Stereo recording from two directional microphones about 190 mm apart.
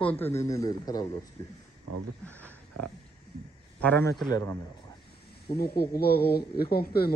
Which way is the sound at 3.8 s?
10° left (ahead or behind).